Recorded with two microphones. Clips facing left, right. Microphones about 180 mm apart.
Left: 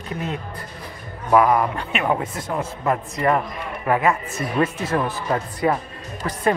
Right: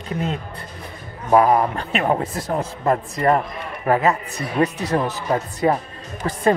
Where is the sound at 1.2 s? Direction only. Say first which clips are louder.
Right 1 dB; 30° right (ahead or behind).